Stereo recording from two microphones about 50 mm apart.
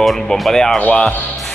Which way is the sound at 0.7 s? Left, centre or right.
Left.